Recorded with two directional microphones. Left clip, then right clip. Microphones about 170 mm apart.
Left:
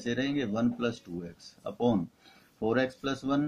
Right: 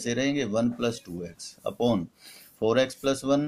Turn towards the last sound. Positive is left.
turn(degrees=-30)  # may be behind; listen again after turning